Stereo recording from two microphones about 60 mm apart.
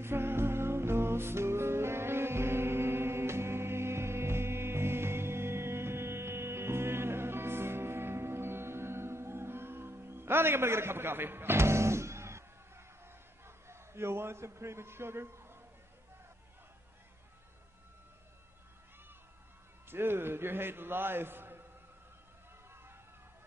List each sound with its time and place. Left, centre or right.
0.0 s music: right
13.7 s a man's voice: right
19.9 s a man's voice: right